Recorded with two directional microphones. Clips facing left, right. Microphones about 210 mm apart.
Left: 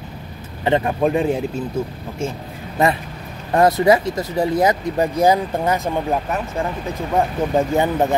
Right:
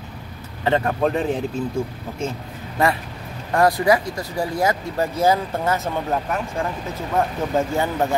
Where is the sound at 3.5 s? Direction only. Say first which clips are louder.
Left 3 dB; 25° left (ahead or behind).